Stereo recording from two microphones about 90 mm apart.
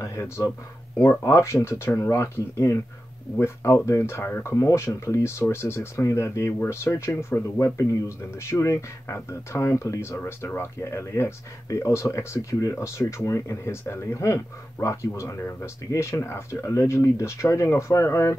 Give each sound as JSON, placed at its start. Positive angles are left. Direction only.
{"t": 0.0, "sound": "speech", "side_deg": 35}